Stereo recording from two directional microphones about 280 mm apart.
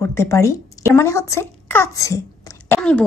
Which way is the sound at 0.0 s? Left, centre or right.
Centre.